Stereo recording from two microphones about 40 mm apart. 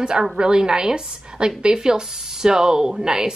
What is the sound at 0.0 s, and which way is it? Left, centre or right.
A woman's voice, centre.